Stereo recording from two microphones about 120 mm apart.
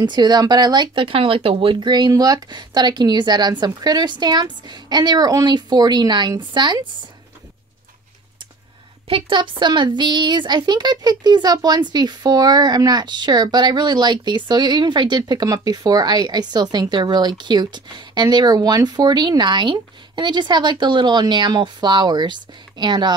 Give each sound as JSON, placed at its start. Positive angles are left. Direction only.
{"t": 0.0, "sound": "speech", "side_deg": -35}
{"t": 1.8, "sound": "a woman's voice", "side_deg": -35}
{"t": 9.0, "sound": "a woman's voice", "side_deg": -45}